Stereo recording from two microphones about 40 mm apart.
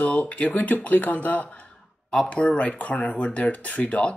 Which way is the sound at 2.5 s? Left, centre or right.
Left.